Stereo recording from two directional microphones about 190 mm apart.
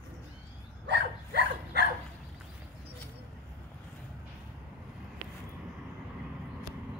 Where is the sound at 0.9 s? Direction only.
60° right (ahead or behind).